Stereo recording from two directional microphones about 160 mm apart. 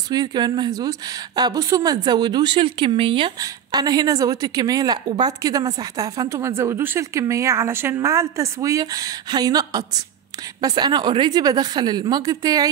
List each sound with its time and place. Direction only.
0.1 s a woman's voice: 25° right (ahead or behind)